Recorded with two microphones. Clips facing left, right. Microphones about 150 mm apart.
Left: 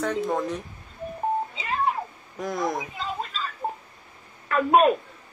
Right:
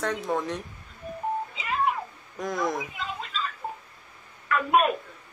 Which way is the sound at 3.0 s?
40° left (ahead or behind).